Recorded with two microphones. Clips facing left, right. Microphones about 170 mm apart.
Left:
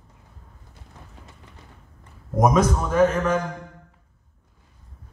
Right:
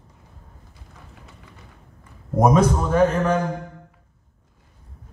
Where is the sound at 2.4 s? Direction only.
30° right (ahead or behind).